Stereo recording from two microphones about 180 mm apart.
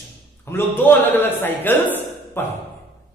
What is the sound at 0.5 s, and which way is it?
A man's voice, 10° left (ahead or behind).